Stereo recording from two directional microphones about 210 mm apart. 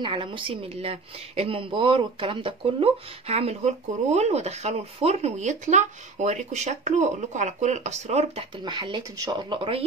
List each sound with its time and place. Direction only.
0.0 s a woman's voice: 25° right (ahead or behind)